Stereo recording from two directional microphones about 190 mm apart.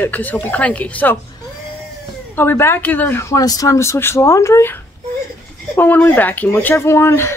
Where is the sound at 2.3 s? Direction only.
10° left (ahead or behind).